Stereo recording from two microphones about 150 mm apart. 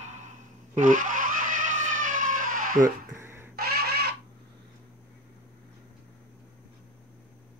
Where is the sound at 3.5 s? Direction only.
90° right.